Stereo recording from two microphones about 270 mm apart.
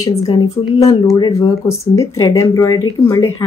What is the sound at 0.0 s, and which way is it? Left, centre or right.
A woman's voice, centre.